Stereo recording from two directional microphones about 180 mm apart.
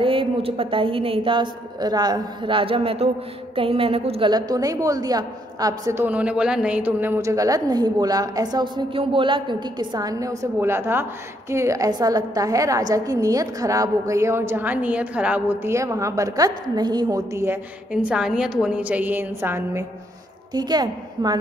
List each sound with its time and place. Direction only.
0.0 s a woman's voice: 30° right (ahead or behind)
4.3 s a woman's voice: 20° right (ahead or behind)
17.9 s a woman's voice: 5° right (ahead or behind)
20.5 s a woman's voice: 25° right (ahead or behind)